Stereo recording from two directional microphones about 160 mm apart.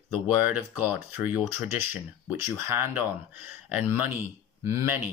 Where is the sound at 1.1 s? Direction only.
10° right (ahead or behind).